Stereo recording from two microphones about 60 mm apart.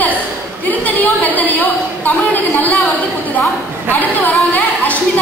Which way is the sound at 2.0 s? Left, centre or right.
Left.